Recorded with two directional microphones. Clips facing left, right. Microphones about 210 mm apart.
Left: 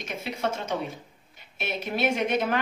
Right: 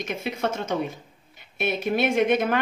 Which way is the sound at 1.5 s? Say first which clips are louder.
Right 6 dB; 55° right (ahead or behind).